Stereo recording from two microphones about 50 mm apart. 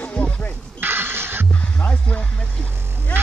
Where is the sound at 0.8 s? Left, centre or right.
Right.